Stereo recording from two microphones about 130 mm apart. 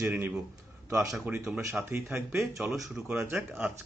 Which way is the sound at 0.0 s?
10° right (ahead or behind).